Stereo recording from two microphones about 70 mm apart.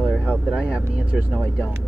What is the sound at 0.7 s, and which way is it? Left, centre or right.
Speech, centre.